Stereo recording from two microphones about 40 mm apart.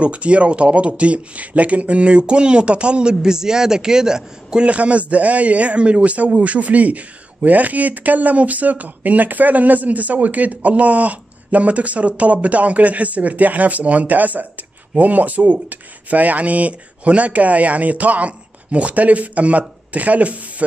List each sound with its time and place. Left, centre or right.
0.0 s speech: right
4.6 s a man's voice: right